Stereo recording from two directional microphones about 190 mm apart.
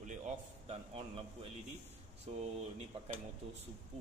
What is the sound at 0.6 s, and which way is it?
Speech, 30° right (ahead or behind).